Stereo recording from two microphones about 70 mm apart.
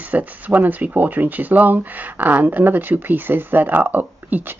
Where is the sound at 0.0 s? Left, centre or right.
Right.